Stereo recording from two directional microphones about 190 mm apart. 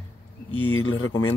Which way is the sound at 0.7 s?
90° left.